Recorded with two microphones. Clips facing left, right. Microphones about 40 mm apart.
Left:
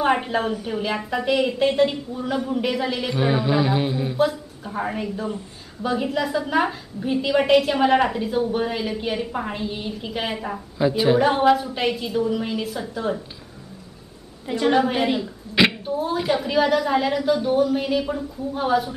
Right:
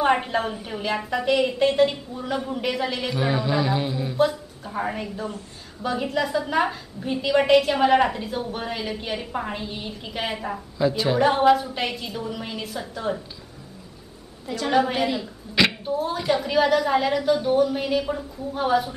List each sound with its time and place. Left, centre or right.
0.0 s a woman's voice: centre
3.2 s a man's voice: centre
4.2 s a woman's voice: centre
10.8 s a man's voice: centre
11.1 s a woman's voice: centre
14.4 s a woman's voice: left
14.7 s a man's voice: centre
15.8 s a woman's voice: centre